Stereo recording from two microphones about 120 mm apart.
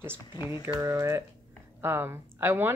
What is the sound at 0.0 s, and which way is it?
A woman's voice, 20° right (ahead or behind).